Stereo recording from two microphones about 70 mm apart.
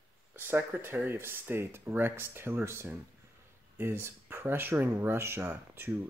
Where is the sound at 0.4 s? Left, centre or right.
Right.